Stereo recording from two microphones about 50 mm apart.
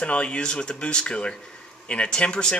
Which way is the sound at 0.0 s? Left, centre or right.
Left.